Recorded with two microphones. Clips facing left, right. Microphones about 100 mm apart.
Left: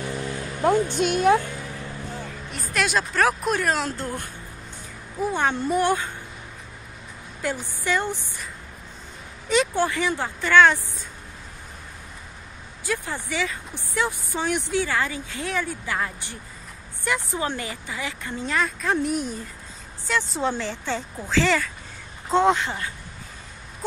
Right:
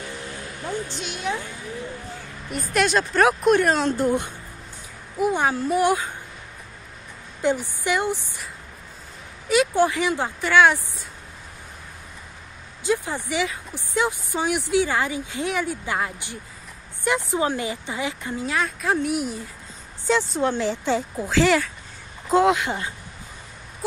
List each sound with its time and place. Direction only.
0.6 s a woman's voice: 60° left (ahead or behind)
2.5 s speech: centre (ahead or behind)
4.0 s a woman's voice: 20° right (ahead or behind)
5.5 s speech: centre (ahead or behind)
5.8 s a woman's voice: 10° right (ahead or behind)
7.4 s a woman's voice: 15° right (ahead or behind)
9.5 s a woman's voice: 10° right (ahead or behind)
12.8 s a woman's voice: 15° right (ahead or behind)
18.4 s a woman's voice: 5° right (ahead or behind)
20.5 s a woman's voice: 15° right (ahead or behind)
22.7 s a woman's voice: 20° right (ahead or behind)